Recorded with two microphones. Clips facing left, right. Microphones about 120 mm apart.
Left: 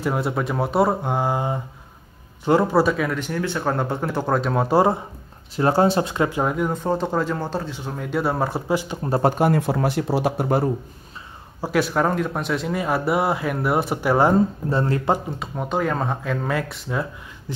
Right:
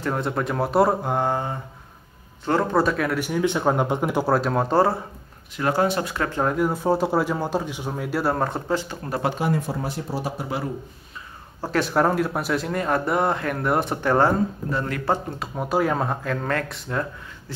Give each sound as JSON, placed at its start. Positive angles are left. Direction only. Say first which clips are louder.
{"t": 0.0, "sound": "a man's voice", "louder": "left 2 dB", "side_deg": 5}
{"t": 2.8, "sound": "speech", "louder": "left 2 dB", "side_deg": 0}
{"t": 3.2, "sound": "speech", "louder": "right 3 dB", "side_deg": -10}
{"t": 4.3, "sound": "speech", "louder": "left 2 dB", "side_deg": 0}
{"t": 5.6, "sound": "speech", "louder": "left 4 dB", "side_deg": 30}
{"t": 6.5, "sound": "speech", "louder": "right 1 dB", "side_deg": -5}
{"t": 9.2, "sound": "speech", "louder": "left 5 dB", "side_deg": 50}
{"t": 11.6, "sound": "speech", "louder": "even", "side_deg": 5}
{"t": 14.7, "sound": "speech", "louder": "left 5 dB", "side_deg": 30}
{"t": 15.2, "sound": "speech", "louder": "even", "side_deg": 0}